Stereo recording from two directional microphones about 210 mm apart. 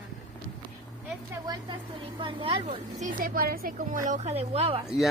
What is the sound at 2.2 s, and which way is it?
Speech, 25° right (ahead or behind).